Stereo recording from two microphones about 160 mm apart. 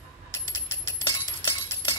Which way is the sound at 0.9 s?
30° left (ahead or behind).